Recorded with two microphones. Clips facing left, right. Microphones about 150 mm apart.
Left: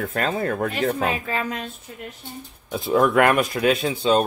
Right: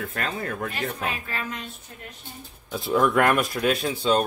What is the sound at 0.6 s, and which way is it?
Speech, 55° left (ahead or behind).